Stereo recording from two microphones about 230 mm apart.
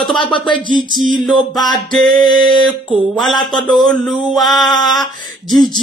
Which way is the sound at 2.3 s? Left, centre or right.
Right.